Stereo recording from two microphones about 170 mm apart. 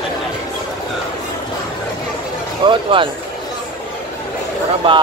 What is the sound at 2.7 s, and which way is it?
Speech, 30° right (ahead or behind).